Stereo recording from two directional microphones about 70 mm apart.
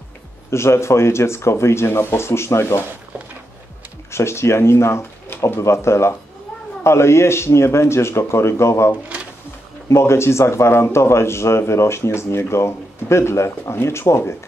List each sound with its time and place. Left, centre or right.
0.5 s speech: left
4.1 s speech: left